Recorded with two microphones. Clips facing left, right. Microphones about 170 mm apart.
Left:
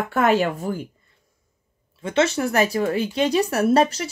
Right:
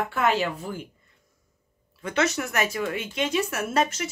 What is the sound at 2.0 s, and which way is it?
Speech, 25° left (ahead or behind).